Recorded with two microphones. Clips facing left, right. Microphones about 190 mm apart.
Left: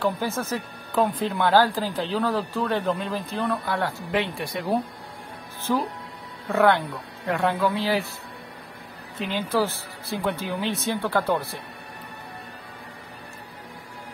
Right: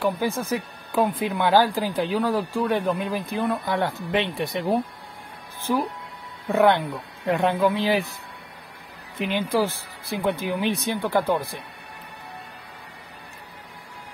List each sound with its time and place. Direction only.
0.0 s speech: 15° right (ahead or behind)
9.2 s speech: 15° right (ahead or behind)